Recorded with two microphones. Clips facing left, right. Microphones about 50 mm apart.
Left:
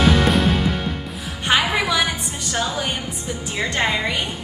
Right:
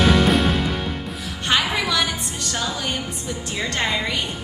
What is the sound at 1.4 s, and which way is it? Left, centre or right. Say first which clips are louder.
Music: left 2 dB; centre.